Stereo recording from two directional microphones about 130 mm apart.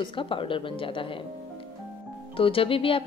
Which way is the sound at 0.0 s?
40° left (ahead or behind).